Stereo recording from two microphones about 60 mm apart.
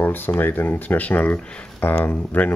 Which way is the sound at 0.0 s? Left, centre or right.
Left.